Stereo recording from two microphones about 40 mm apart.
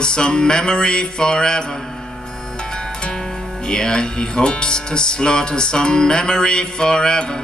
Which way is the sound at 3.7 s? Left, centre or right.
Centre.